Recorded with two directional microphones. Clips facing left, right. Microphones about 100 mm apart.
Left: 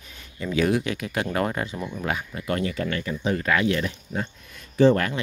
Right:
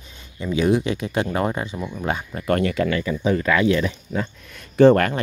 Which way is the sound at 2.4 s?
65° right (ahead or behind).